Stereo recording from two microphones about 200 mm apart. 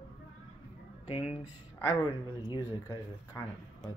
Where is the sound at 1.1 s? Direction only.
30° left (ahead or behind).